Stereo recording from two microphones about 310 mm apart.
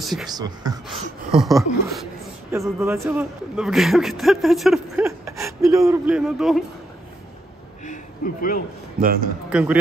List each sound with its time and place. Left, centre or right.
0.0 s speech: centre
0.3 s speech: centre
0.8 s a sound: centre
2.5 s a man's voice: centre
7.8 s a sound: left
9.5 s a man's voice: centre